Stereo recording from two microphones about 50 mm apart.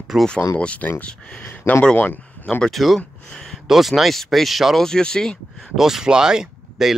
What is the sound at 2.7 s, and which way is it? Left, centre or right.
Speech, centre.